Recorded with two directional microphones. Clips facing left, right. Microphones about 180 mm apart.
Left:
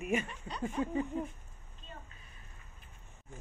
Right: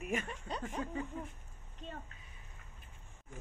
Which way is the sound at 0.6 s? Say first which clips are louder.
Left 8 dB; 20° left (ahead or behind).